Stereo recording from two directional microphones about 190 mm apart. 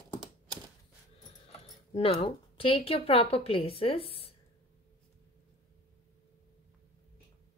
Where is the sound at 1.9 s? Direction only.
30° left (ahead or behind).